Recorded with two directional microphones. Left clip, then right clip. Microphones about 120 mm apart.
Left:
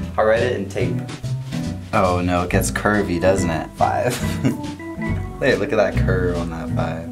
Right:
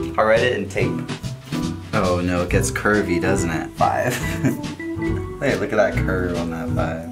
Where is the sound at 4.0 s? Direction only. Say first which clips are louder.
Even; 15° left (ahead or behind).